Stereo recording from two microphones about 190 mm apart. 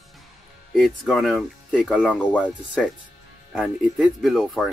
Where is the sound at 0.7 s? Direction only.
Centre (ahead or behind).